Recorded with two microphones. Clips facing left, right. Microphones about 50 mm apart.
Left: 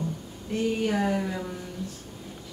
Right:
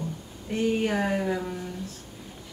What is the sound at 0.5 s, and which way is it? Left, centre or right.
Speech, right.